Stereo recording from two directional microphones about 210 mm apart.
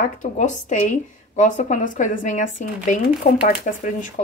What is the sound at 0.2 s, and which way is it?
Speech, 35° left (ahead or behind).